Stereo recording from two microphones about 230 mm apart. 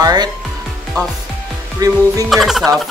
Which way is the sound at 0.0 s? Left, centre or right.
Centre.